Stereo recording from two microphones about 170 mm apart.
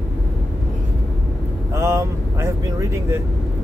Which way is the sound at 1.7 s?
15° right (ahead or behind).